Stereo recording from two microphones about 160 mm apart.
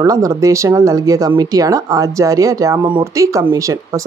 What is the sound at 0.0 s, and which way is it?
Speech, 20° right (ahead or behind).